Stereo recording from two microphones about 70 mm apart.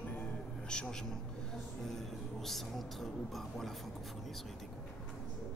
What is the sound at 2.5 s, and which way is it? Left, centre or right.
Speech, centre.